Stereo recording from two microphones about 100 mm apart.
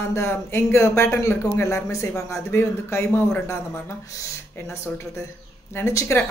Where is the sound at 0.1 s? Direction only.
25° left (ahead or behind).